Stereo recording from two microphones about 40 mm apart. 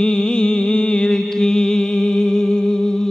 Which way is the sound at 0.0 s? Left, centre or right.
Left.